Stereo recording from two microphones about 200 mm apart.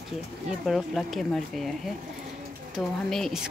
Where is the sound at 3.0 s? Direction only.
Centre (ahead or behind).